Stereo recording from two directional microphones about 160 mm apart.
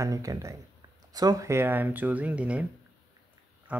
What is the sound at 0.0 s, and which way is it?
Speech, 20° right (ahead or behind).